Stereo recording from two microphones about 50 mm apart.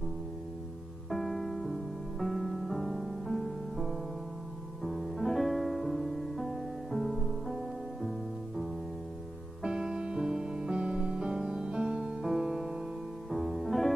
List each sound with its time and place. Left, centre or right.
1.1 s music: centre
9.6 s music: centre